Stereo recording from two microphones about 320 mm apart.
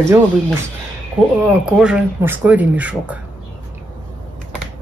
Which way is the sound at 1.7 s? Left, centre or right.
Centre.